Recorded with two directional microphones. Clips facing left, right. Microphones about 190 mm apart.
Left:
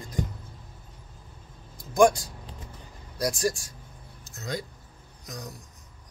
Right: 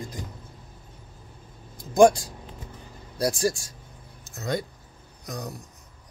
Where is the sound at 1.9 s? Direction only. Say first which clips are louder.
Right 3 dB; 25° right (ahead or behind).